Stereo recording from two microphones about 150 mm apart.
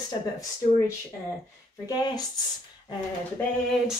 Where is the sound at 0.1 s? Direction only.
25° left (ahead or behind).